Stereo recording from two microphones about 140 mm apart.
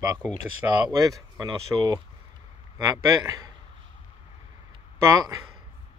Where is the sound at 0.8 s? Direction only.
25° right (ahead or behind).